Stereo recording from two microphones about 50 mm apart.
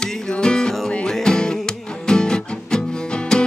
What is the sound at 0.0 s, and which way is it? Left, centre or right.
Music, centre.